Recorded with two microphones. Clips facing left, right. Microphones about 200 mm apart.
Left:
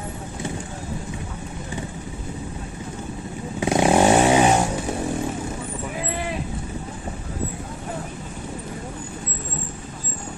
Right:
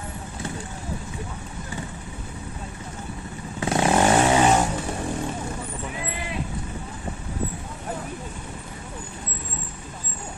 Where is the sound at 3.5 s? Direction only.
15° left (ahead or behind).